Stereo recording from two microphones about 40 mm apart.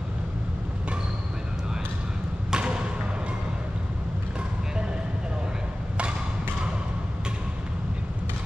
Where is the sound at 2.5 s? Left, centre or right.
Right.